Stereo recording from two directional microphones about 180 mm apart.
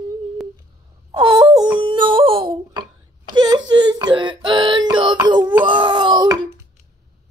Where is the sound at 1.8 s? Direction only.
25° right (ahead or behind).